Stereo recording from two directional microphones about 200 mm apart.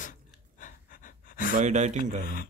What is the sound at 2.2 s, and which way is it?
Speech, 45° left (ahead or behind).